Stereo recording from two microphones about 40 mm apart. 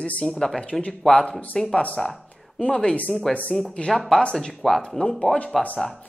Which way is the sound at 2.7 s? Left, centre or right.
Left.